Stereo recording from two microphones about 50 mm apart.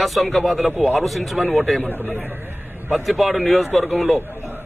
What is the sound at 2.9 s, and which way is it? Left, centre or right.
A man's voice, centre.